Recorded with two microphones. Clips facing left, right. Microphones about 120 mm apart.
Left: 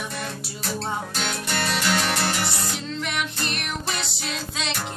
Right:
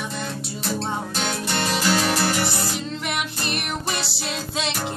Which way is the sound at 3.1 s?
5° right (ahead or behind).